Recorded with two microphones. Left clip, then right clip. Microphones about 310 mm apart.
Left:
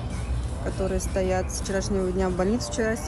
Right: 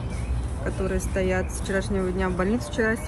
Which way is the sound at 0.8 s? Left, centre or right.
Centre.